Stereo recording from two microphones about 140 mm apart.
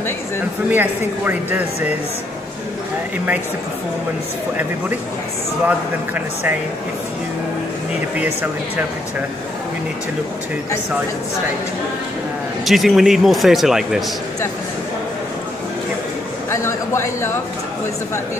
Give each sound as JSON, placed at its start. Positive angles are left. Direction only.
{"t": 0.7, "sound": "speech", "side_deg": -15}
{"t": 5.7, "sound": "speech", "side_deg": -10}
{"t": 8.2, "sound": "speech", "side_deg": -15}
{"t": 12.6, "sound": "speech", "side_deg": 0}
{"t": 16.4, "sound": "a man's voice", "side_deg": 20}